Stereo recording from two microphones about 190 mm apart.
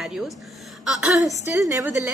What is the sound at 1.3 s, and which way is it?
Speech, 15° right (ahead or behind).